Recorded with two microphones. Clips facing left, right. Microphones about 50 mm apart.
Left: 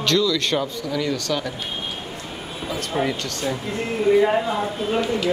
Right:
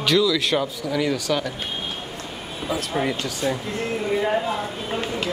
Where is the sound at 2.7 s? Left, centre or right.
Centre.